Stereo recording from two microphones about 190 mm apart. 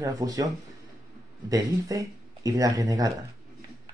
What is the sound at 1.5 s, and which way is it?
Speech, 20° right (ahead or behind).